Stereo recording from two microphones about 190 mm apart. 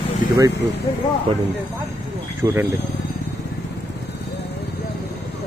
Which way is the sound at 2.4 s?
20° right (ahead or behind).